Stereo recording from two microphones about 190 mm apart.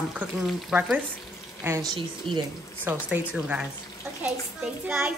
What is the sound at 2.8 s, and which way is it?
A child's voice, 10° right (ahead or behind).